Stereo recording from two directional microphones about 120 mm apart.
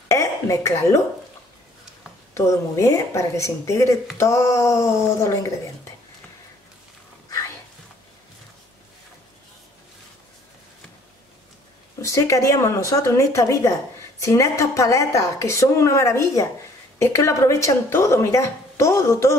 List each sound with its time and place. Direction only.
0.1 s speech: 25° left (ahead or behind)
2.3 s a woman's voice: 25° left (ahead or behind)
12.0 s a woman's voice: 25° left (ahead or behind)